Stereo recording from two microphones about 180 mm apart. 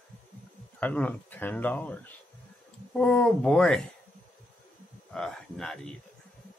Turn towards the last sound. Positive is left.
turn(degrees=5)  # may be behind; listen again after turning